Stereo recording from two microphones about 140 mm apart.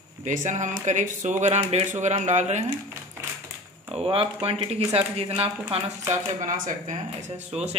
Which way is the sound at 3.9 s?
40° right (ahead or behind).